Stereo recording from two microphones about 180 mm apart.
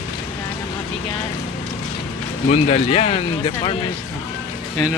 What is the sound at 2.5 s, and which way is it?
Speech, 35° left (ahead or behind).